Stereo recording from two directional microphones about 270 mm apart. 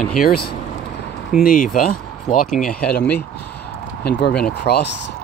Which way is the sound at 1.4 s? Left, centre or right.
Left.